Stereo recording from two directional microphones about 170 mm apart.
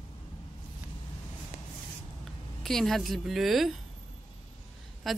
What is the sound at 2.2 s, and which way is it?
Speech, centre (ahead or behind).